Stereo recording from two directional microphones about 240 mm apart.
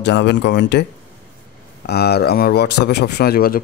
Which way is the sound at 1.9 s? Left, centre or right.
Left.